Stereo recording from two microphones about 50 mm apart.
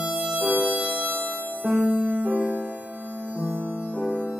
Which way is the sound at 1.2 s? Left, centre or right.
Left.